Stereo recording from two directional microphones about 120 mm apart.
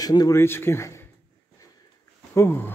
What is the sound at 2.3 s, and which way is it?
Speech, 20° left (ahead or behind).